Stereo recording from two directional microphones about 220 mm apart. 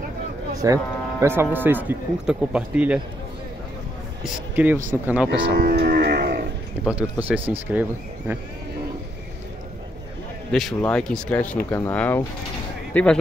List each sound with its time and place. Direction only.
0.6 s speech: 15° right (ahead or behind)
4.2 s speech: 10° right (ahead or behind)
5.6 s livestock: 40° right (ahead or behind)
6.8 s speech: 5° right (ahead or behind)
10.5 s speech: centre (ahead or behind)